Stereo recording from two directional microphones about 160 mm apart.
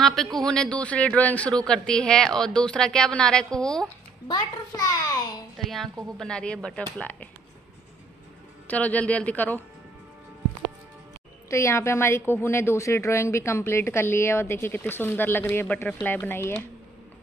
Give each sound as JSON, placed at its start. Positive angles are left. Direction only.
{"t": 0.0, "sound": "speech", "side_deg": 0}
{"t": 4.3, "sound": "a child's voice", "side_deg": 20}
{"t": 5.6, "sound": "speech", "side_deg": 0}
{"t": 8.6, "sound": "a woman's voice", "side_deg": 10}
{"t": 11.5, "sound": "a woman's voice", "side_deg": 15}